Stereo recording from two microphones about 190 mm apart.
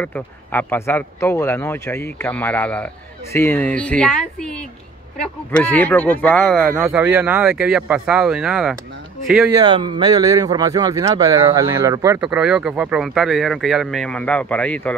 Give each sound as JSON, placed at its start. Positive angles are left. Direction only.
{"t": 0.0, "sound": "speech", "side_deg": 10}
{"t": 9.6, "sound": "speech", "side_deg": -25}
{"t": 12.2, "sound": "speech", "side_deg": -5}